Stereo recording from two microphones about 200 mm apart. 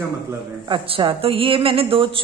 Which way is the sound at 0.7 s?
25° right (ahead or behind).